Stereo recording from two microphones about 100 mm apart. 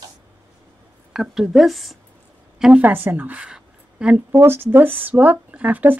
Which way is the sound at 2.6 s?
10° right (ahead or behind).